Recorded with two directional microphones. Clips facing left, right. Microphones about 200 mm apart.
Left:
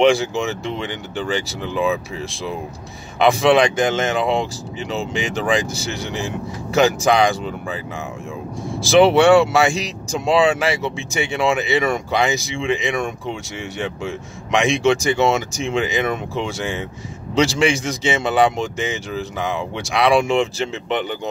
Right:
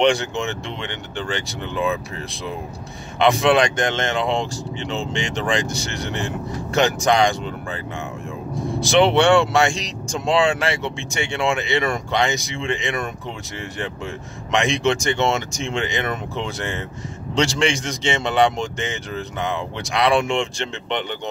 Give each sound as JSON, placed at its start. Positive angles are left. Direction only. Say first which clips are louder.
{"t": 0.0, "sound": "speech", "louder": "left 3 dB", "side_deg": 0}
{"t": 3.2, "sound": "speech", "louder": "left 2 dB", "side_deg": 0}
{"t": 8.8, "sound": "speech", "louder": "left 4 dB", "side_deg": 5}